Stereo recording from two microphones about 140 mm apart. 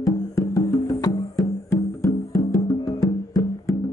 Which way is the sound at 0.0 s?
25° left (ahead or behind).